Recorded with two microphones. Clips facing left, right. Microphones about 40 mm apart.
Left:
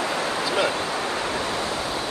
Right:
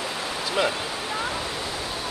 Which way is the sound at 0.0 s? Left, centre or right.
Left.